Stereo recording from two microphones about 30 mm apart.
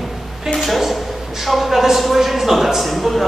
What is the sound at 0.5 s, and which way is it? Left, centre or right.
A man's voice, centre.